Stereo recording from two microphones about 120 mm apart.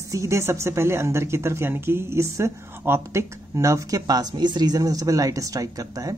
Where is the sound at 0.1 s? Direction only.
25° right (ahead or behind).